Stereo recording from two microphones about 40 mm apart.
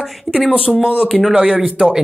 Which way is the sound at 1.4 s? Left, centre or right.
Centre.